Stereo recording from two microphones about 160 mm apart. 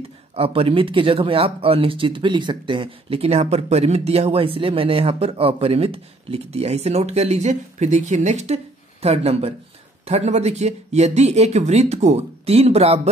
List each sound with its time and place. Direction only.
0.4 s speech: 35° right (ahead or behind)